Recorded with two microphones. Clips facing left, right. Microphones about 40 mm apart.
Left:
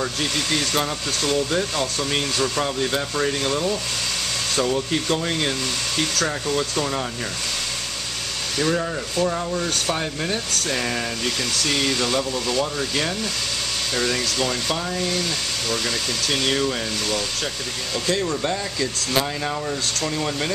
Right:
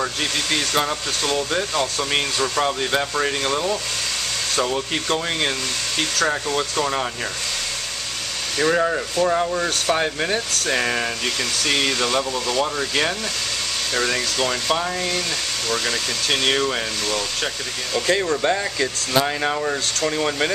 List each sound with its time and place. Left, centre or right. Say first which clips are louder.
0.0 s speech: right 1 dB; centre
2.6 s speech: right 2 dB; right
8.7 s speech: right 4 dB; right
18.0 s speech: right 4 dB; centre